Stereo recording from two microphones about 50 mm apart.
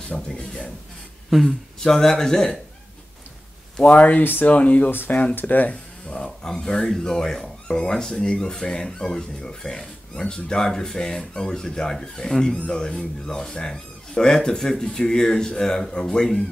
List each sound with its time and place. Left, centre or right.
0.3 s speech: centre
1.3 s speech: centre
1.8 s speech: centre
3.9 s speech: left
4.2 s speech: left
4.5 s speech: left
5.3 s speech: left
6.0 s speech: centre